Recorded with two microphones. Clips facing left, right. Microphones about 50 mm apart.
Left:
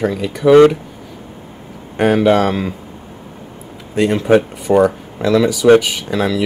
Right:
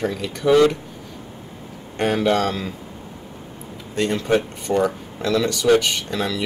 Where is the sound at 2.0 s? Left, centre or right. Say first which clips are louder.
Left 7 dB; centre.